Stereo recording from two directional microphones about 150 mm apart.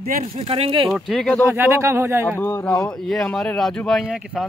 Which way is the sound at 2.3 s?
15° left (ahead or behind).